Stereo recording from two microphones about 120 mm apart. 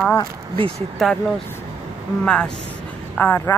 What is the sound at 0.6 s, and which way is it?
Speech, 50° right (ahead or behind).